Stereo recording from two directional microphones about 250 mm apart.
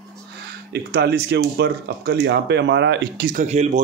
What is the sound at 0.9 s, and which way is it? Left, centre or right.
A man's voice, right.